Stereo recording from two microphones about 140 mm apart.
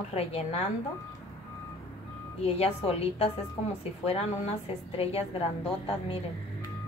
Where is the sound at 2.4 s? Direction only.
50° left (ahead or behind).